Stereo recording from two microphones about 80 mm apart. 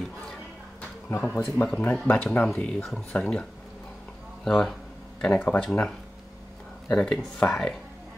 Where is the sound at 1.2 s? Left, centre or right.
Left.